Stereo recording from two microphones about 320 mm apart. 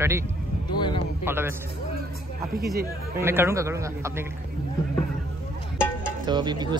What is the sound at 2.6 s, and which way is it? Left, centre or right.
Speech, centre.